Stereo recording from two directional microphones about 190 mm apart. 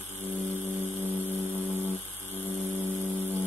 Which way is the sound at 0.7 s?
10° left (ahead or behind).